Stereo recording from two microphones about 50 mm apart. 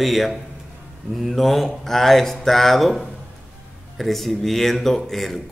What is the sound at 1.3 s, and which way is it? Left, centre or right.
A man's voice, centre.